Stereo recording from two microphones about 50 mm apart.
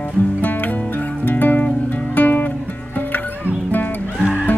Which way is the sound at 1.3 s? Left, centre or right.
Left.